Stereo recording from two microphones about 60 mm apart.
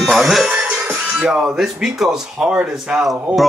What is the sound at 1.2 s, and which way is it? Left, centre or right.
Speech, centre.